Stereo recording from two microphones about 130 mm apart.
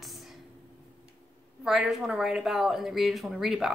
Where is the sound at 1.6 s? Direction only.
5° right (ahead or behind).